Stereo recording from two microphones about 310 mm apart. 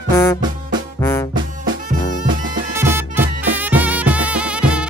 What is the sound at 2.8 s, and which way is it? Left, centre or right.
Music, centre.